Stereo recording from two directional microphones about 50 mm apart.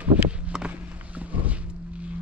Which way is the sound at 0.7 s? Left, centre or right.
Right.